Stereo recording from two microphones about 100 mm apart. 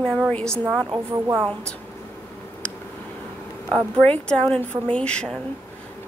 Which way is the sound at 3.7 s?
10° left (ahead or behind).